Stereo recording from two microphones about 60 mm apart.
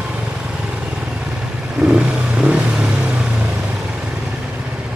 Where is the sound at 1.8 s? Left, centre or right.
Centre.